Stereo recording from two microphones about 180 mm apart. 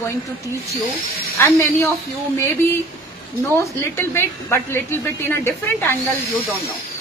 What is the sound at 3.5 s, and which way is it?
A woman's voice, 15° left (ahead or behind).